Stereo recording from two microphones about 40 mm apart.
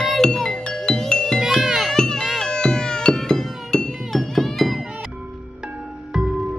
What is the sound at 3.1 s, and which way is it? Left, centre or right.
Music, centre.